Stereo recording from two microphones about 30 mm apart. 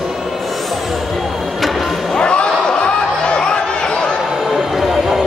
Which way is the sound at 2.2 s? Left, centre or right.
Left.